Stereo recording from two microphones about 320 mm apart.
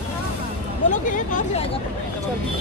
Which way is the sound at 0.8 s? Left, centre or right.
Left.